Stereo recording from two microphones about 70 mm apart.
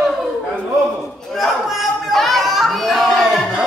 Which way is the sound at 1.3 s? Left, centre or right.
Centre.